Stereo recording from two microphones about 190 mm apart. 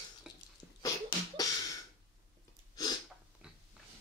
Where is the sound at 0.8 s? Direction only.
20° left (ahead or behind).